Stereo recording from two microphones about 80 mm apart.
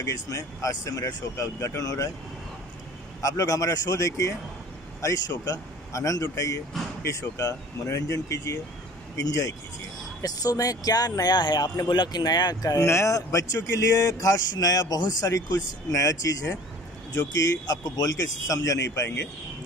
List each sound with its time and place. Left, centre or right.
0.0 s speech: left
3.2 s speech: left
12.7 s speech: left